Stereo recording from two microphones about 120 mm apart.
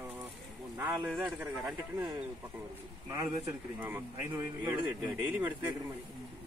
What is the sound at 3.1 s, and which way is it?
A man's voice, 25° right (ahead or behind).